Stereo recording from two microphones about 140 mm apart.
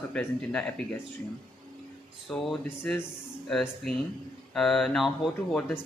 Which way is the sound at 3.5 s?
5° left (ahead or behind).